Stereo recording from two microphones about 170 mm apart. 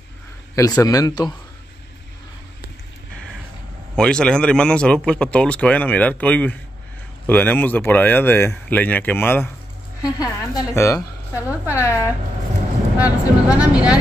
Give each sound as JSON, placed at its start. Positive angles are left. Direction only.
{"t": 0.6, "sound": "a man's voice", "side_deg": 20}
{"t": 3.9, "sound": "a man's voice", "side_deg": 5}
{"t": 12.9, "sound": "speech", "side_deg": -5}